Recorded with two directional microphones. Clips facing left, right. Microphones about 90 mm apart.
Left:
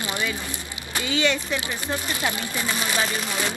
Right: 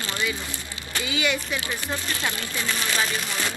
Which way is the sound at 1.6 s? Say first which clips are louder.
Left 1 dB; 20° left (ahead or behind).